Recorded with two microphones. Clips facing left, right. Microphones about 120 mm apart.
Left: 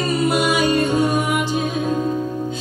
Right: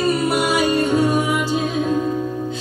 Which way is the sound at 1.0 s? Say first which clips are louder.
Right 1 dB; 15° left (ahead or behind).